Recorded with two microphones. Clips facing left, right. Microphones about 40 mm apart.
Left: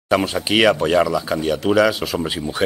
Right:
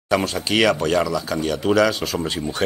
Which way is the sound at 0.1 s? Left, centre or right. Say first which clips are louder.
Left 2 dB; centre.